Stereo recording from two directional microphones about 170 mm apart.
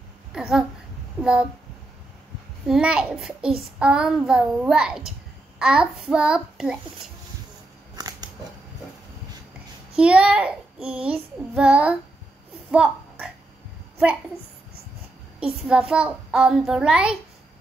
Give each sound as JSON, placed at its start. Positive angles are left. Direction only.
{"t": 0.3, "sound": "a sound", "side_deg": -5}
{"t": 1.2, "sound": "speech", "side_deg": -5}
{"t": 2.7, "sound": "a child's voice", "side_deg": -5}
{"t": 7.9, "sound": "scissors", "side_deg": -25}
{"t": 9.9, "sound": "child singing", "side_deg": -5}
{"t": 12.7, "sound": "a child's voice", "side_deg": -5}
{"t": 15.6, "sound": "a child's voice", "side_deg": -5}